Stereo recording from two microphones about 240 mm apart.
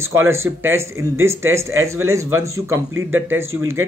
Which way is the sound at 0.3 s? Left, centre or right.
Centre.